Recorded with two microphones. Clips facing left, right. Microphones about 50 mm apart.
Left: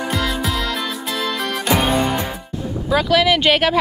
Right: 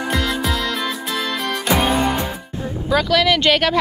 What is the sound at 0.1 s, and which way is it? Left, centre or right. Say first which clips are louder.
Music: right 2 dB; centre.